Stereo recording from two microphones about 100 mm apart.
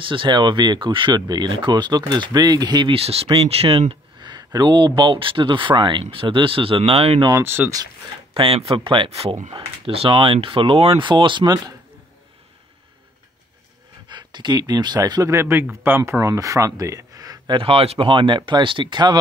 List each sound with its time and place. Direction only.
0.0 s speech: 55° right (ahead or behind)
2.9 s speech: 85° right
7.3 s speech: 20° right (ahead or behind)
8.4 s speech: 70° right (ahead or behind)
9.1 s speech: 75° right (ahead or behind); by 11.5 s 50° right (ahead or behind)
14.0 s speech: 50° right (ahead or behind)
15.3 s speech: 25° right (ahead or behind)
17.6 s speech: 70° right (ahead or behind); by 19.1 s 45° right (ahead or behind)